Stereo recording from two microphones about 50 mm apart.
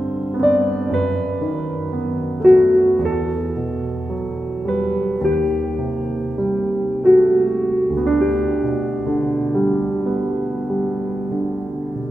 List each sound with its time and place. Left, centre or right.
0.4 s music: centre
2.4 s music: centre
4.6 s music: centre
7.1 s music: centre